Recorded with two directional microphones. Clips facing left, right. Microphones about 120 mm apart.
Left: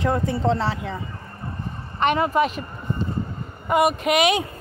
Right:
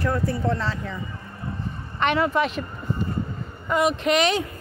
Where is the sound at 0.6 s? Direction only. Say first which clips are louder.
Left 3 dB; 65° left (ahead or behind).